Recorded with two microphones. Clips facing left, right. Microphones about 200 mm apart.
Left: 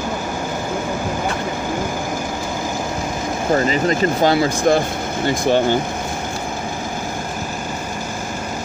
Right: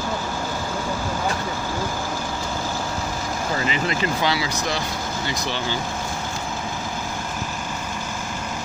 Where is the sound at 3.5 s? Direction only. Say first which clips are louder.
Left 8 dB; 40° left (ahead or behind).